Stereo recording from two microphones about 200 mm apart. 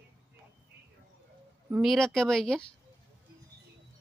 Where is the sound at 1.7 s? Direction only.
Centre (ahead or behind).